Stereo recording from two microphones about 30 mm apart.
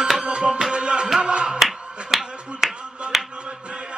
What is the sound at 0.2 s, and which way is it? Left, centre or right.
Music, right.